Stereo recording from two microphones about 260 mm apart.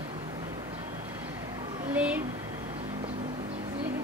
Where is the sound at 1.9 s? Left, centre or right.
Centre.